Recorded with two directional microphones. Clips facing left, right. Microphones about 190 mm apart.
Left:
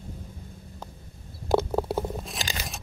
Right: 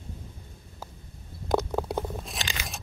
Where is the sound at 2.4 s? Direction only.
35° left (ahead or behind).